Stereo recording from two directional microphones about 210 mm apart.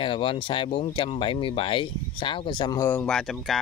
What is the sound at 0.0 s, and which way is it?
Speech, 25° left (ahead or behind).